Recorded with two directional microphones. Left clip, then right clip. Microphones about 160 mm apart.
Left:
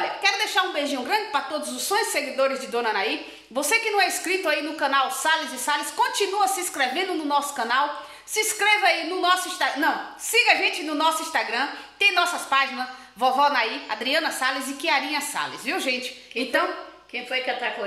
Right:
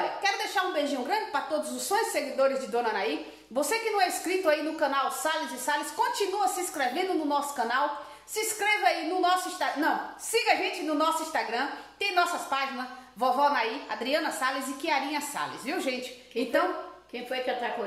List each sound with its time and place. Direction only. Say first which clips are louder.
0.2 s a woman's voice: left 8 dB; 15° left (ahead or behind)
17.3 s a woman's voice: left 4 dB; 20° right (ahead or behind)